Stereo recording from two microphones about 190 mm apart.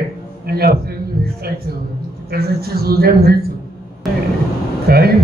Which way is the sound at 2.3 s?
55° right (ahead or behind).